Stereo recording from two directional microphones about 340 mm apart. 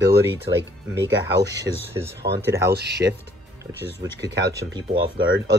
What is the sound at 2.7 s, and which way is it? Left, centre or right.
Speech, right.